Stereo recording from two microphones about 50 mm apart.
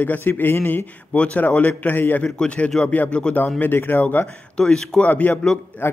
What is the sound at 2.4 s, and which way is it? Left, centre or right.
A man's voice, left.